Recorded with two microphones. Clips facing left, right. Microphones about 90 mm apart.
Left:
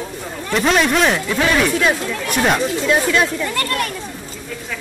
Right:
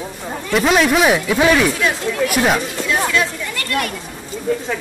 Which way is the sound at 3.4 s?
40° left (ahead or behind).